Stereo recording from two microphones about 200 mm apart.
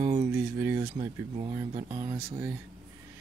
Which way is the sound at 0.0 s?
35° right (ahead or behind).